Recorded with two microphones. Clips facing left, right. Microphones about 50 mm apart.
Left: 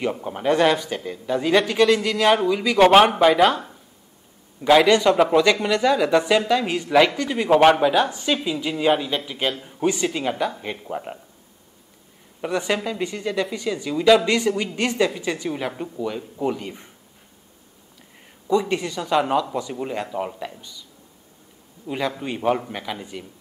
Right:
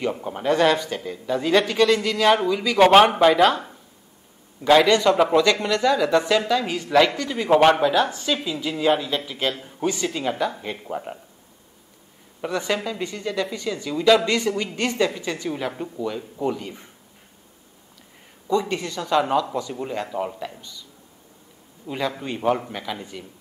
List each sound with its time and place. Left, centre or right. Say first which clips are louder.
0.0 s speech: left 1 dB; centre
5.4 s speech: left 1 dB; centre
7.4 s speech: left 1 dB; centre
12.4 s speech: left 1 dB; centre
18.5 s speech: left 2 dB; centre
21.8 s speech: left 1 dB; centre